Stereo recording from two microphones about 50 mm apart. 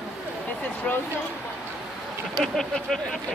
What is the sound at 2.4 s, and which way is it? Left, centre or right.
Speech, centre.